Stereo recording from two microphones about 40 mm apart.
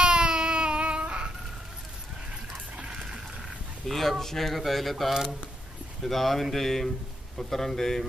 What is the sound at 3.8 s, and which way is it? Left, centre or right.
Speech, centre.